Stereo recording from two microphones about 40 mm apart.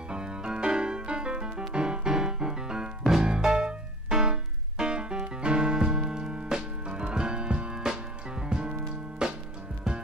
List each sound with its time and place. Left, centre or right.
0.1 s music: right